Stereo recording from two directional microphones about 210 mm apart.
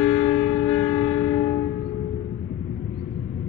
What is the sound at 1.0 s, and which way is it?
Train, 10° left (ahead or behind).